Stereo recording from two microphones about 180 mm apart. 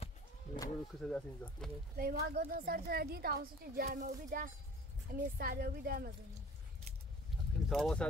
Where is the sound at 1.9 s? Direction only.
55° right (ahead or behind).